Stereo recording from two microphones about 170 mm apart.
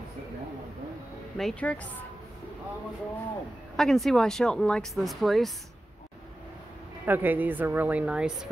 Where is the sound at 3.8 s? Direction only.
Centre (ahead or behind).